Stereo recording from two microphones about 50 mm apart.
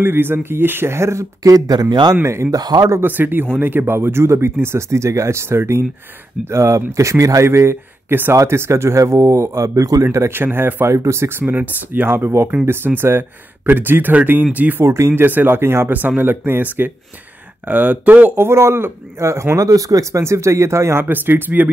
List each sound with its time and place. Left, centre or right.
0.0 s speech: right
3.0 s speech: right
6.5 s speech: right
10.3 s speech: right
10.9 s speech: right
11.3 s speech: right
14.8 s speech: right
15.2 s speech: right
16.2 s speech: right
17.6 s speech: right
18.4 s speech: right
21.0 s speech: right